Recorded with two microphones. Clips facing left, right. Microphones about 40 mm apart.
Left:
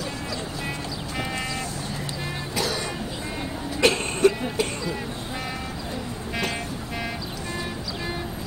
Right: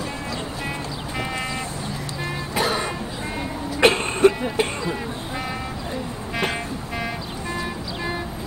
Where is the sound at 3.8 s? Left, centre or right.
Right.